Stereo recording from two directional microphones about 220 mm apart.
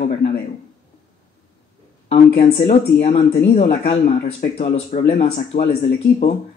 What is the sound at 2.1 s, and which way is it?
Speech, 25° left (ahead or behind).